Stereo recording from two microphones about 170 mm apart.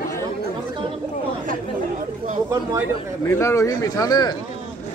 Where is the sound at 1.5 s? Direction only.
50° right (ahead or behind).